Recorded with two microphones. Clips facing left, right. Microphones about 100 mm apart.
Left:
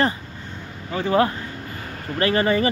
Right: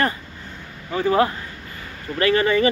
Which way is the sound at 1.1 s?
25° right (ahead or behind).